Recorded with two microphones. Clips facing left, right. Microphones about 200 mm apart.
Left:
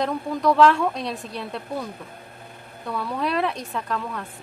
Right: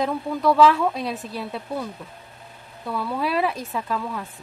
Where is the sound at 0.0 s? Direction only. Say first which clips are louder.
Even; 5° right (ahead or behind).